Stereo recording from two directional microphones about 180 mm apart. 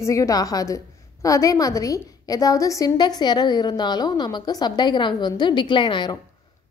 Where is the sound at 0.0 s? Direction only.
15° left (ahead or behind).